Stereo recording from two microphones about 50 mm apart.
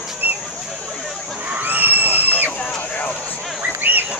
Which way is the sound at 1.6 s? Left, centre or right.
Right.